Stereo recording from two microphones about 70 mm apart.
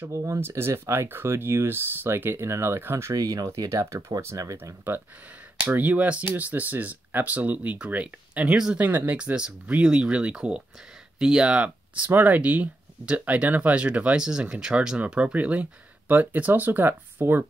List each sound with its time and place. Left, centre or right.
0.1 s speech: right
3.2 s speech: right
4.9 s speech: right; by 8.7 s centre
8.7 s speech: right